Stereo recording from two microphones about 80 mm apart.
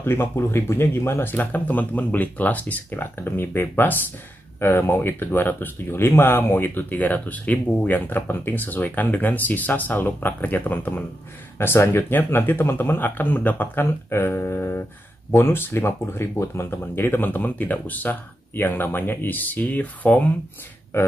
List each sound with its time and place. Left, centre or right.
0.0 s speech: left